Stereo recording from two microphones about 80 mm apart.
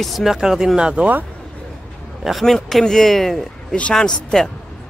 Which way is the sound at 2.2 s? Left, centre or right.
Centre.